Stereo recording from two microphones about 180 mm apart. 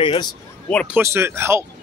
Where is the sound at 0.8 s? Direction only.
10° right (ahead or behind).